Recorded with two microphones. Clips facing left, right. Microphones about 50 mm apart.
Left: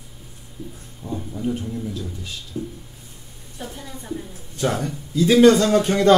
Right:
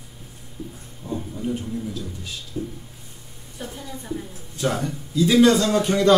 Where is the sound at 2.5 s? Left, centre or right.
Centre.